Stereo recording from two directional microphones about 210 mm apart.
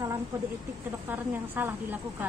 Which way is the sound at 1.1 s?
10° right (ahead or behind).